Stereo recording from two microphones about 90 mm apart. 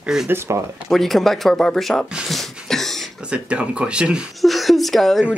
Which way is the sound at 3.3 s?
10° right (ahead or behind).